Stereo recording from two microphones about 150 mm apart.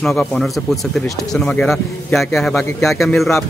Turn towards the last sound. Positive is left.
turn(degrees=0)  # may be behind; listen again after turning